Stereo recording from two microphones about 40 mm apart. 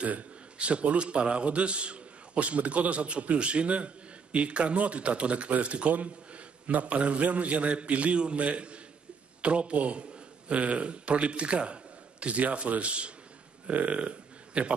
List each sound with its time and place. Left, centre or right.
0.0 s a man's voice: right